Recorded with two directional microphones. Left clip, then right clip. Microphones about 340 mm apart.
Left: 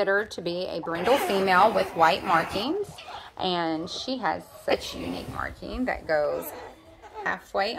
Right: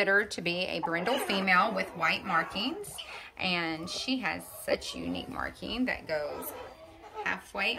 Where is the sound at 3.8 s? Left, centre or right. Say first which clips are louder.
Left 4 dB; centre.